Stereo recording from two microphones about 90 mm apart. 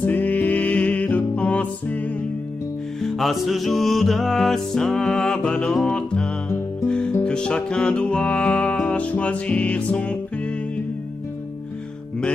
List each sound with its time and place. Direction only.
0.0 s music: 20° left (ahead or behind)
3.0 s music: centre (ahead or behind)